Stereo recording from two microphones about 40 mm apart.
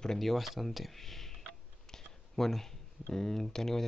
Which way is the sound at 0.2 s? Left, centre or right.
Centre.